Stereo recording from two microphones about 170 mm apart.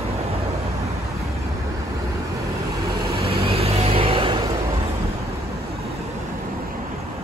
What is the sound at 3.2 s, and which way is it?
Vehicle, 35° right (ahead or behind).